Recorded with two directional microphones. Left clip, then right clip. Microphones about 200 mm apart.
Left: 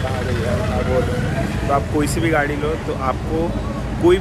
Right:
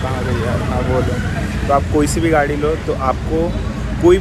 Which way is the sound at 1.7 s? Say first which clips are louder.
Right 5 dB; 5° left (ahead or behind).